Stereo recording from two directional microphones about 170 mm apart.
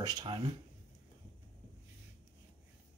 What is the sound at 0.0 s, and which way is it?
Speech, 25° right (ahead or behind).